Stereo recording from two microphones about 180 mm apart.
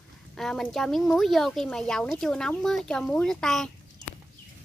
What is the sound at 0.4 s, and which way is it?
Speech, centre (ahead or behind).